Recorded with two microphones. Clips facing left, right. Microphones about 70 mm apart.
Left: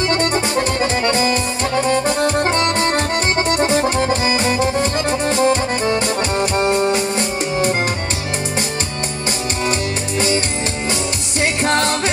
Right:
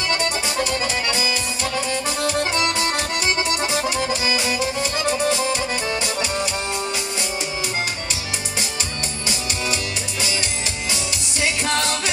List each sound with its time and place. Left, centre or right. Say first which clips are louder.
0.1 s accordion: left 6 dB; left
11.4 s music: left 5 dB; left